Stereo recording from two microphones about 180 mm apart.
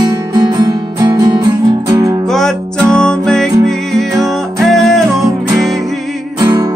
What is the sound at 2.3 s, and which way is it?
Music, centre (ahead or behind).